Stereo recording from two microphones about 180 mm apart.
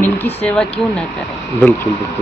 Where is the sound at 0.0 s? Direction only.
10° left (ahead or behind).